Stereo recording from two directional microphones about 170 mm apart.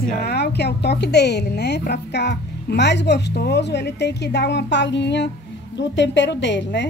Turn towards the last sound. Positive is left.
turn(degrees=90)